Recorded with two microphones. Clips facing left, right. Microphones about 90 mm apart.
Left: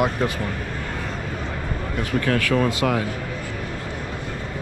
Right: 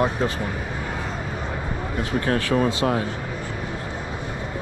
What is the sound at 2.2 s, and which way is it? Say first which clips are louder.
Speech: even; 25° right (ahead or behind).